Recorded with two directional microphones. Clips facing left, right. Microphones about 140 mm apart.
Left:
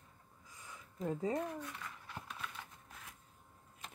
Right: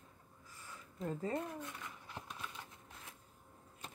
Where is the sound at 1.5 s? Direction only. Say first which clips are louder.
Left 1 dB; 20° right (ahead or behind).